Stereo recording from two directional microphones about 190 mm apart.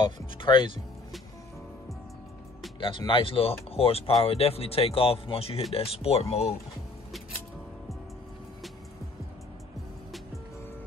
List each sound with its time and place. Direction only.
0.0 s speech: 25° left (ahead or behind)
2.8 s speech: 25° left (ahead or behind)